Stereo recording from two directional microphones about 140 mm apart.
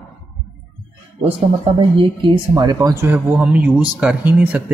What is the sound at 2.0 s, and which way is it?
Speech, 30° right (ahead or behind).